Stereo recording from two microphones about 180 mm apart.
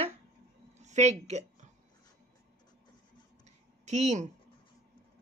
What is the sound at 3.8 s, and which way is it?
Speech, 40° right (ahead or behind).